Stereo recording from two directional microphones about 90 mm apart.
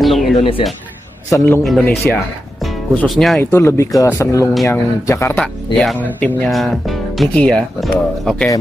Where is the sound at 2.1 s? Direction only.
15° left (ahead or behind).